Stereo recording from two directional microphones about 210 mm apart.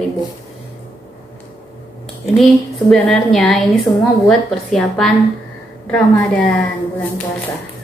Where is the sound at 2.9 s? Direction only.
Centre (ahead or behind).